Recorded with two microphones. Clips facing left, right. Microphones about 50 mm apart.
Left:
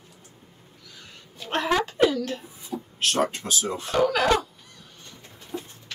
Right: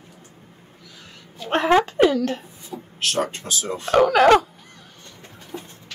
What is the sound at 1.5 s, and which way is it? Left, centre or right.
Speech, right.